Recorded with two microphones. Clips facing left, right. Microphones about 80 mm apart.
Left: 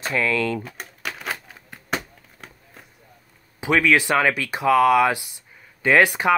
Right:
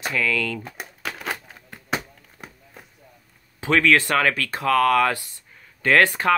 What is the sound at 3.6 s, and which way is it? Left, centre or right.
Speech, centre.